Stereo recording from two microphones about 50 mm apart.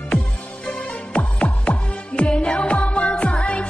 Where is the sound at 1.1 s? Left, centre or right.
Left.